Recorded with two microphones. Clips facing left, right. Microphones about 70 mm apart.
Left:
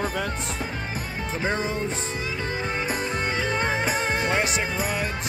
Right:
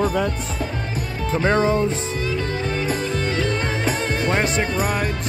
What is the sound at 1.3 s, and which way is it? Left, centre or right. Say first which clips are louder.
Music: right 8 dB; right.